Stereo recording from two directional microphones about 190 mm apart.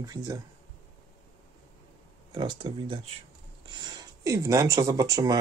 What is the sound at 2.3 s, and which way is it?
Speech, 25° right (ahead or behind).